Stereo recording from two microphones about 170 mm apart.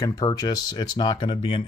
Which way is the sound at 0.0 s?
20° left (ahead or behind).